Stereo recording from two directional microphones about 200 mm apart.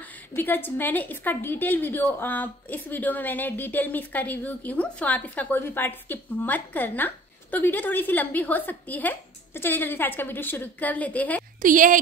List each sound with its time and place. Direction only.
0.0 s a woman's voice: 10° left (ahead or behind)
11.6 s speech: 40° right (ahead or behind)